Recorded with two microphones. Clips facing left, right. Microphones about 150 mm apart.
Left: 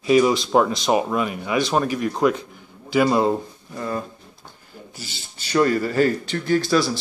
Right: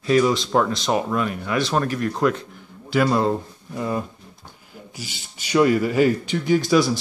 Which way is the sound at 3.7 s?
10° right (ahead or behind).